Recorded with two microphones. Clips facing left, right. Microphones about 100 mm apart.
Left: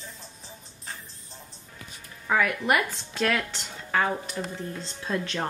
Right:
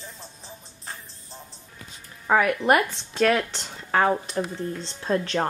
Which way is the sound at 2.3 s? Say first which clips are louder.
Right 4 dB; 40° right (ahead or behind).